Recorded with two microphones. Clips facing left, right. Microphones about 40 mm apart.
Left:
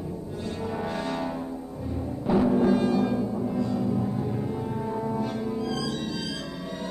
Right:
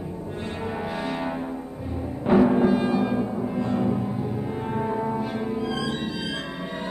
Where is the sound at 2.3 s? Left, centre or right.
Right.